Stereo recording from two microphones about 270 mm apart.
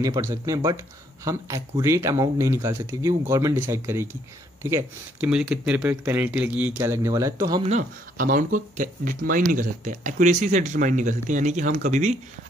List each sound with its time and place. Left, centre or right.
0.0 s speech: centre